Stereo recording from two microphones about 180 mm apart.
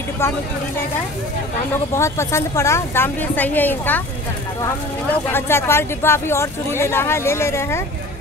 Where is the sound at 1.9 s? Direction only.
15° left (ahead or behind).